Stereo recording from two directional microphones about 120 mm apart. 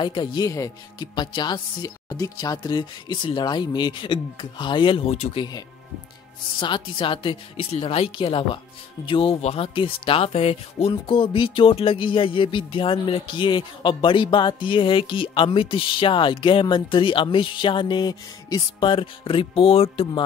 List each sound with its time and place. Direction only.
0.0 s speech: 40° left (ahead or behind)
0.5 s speech: 25° left (ahead or behind)
1.1 s speech: 40° left (ahead or behind); by 5.3 s 60° left (ahead or behind)
5.3 s speech: 40° left (ahead or behind)
6.6 s speech: 45° left (ahead or behind)